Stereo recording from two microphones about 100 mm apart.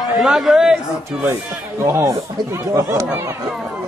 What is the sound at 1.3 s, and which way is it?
Speech, 25° right (ahead or behind).